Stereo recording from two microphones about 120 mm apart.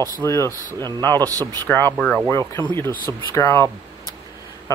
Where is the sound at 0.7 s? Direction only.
35° right (ahead or behind).